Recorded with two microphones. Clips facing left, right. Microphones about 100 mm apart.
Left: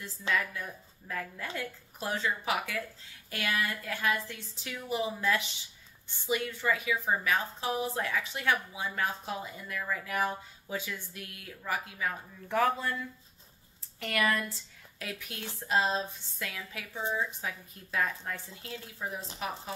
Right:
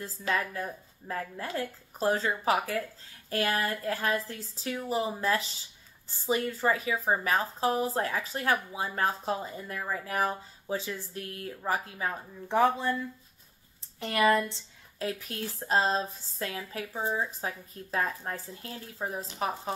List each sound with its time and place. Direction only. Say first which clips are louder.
0.3 s a woman's voice: right 2 dB; 35° right (ahead or behind)
13.9 s a woman's voice: right 5 dB; 25° right (ahead or behind)